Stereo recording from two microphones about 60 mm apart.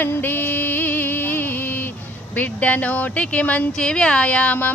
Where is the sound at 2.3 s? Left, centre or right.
Left.